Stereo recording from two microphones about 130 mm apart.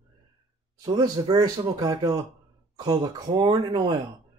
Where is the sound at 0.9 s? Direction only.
30° right (ahead or behind).